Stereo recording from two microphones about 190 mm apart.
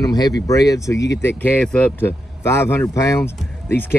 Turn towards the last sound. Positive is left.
turn(degrees=10)  # may be behind; listen again after turning